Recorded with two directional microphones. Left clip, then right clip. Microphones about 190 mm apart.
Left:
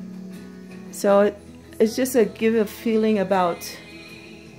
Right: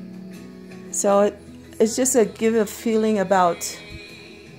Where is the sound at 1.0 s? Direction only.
10° left (ahead or behind).